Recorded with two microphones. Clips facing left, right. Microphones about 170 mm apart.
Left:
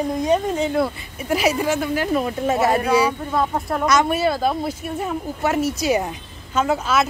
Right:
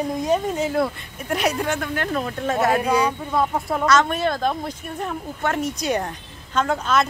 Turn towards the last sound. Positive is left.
turn(degrees=5)  # may be behind; listen again after turning